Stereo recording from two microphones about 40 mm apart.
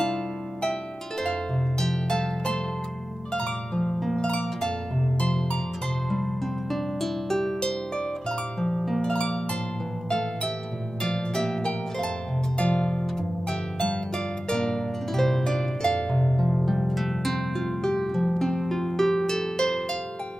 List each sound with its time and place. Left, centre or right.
0.0 s harp: centre
1.8 s harp: centre
4.2 s harp: centre
6.7 s music: centre
8.5 s harp: centre
12.5 s music: centre
14.5 s harp: centre
16.3 s music: centre
18.1 s harp: centre